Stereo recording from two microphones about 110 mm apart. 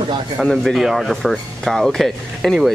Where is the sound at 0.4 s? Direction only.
Centre (ahead or behind).